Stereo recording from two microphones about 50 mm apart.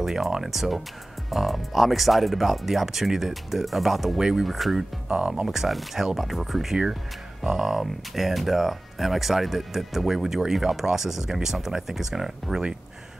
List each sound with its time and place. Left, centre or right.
0.0 s speech: centre
5.0 s speech: centre
5.4 s speech: centre